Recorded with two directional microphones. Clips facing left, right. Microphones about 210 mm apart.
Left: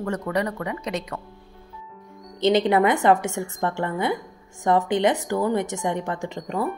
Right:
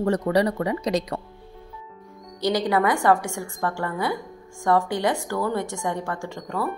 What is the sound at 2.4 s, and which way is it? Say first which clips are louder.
A woman's voice: left 3 dB; 25° left (ahead or behind).